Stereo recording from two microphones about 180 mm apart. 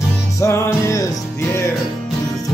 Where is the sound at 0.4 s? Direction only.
15° left (ahead or behind).